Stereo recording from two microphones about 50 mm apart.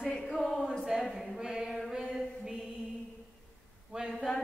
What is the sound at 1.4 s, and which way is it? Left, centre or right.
Music, centre.